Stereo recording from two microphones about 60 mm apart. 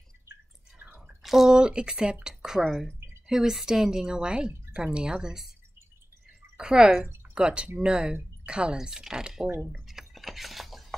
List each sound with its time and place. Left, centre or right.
0.7 s drip: right
1.2 s a woman's voice: centre
6.5 s a woman's voice: centre
7.8 s a sound: centre